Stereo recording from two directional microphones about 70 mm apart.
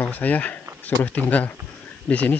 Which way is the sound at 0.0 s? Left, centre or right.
Left.